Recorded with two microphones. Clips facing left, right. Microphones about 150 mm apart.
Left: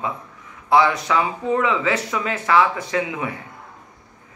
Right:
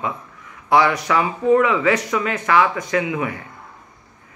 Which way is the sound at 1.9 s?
25° left (ahead or behind).